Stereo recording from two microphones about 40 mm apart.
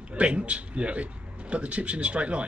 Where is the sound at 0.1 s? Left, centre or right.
Right.